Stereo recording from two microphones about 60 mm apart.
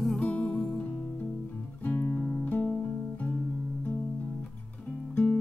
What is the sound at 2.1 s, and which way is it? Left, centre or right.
Guitar, left.